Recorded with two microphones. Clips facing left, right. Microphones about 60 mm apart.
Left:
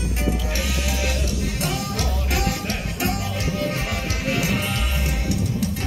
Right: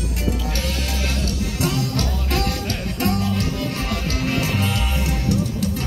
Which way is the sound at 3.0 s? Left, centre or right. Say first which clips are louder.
Right 5 dB; centre.